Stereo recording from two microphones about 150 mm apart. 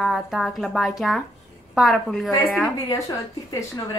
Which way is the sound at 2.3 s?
10° left (ahead or behind).